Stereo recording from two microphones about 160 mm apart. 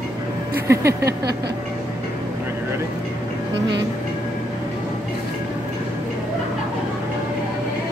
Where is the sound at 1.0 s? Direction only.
90° right.